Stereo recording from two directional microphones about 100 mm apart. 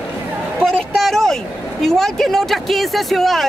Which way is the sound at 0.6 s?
Centre (ahead or behind).